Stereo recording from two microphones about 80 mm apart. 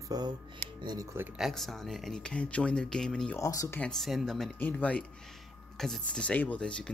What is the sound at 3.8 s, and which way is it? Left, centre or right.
Speech, centre.